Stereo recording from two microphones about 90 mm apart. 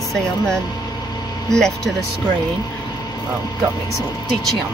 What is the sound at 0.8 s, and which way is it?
Vehicle, 45° left (ahead or behind).